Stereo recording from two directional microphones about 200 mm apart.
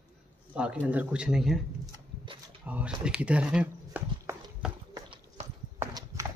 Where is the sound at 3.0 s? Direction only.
5° right (ahead or behind).